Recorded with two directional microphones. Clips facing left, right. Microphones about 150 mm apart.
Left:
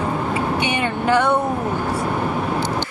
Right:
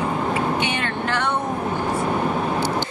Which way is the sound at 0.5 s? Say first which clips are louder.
Left 3 dB; 15° left (ahead or behind).